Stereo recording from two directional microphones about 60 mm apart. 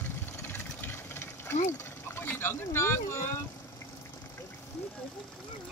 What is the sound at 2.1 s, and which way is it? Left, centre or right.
Boat, left.